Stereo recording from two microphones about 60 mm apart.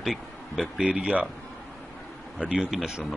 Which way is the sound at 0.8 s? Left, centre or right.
Centre.